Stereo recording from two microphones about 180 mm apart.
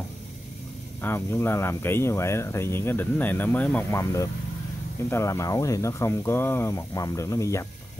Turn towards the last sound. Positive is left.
turn(degrees=15)  # may be behind; listen again after turning